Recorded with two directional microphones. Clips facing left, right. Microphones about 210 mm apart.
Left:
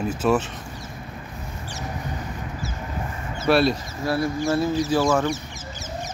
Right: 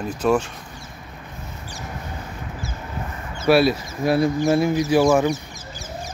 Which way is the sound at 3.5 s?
5° right (ahead or behind).